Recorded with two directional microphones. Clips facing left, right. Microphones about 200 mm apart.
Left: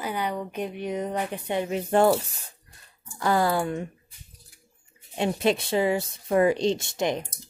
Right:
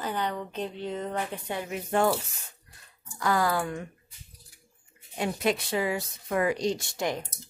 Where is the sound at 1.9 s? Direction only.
30° left (ahead or behind).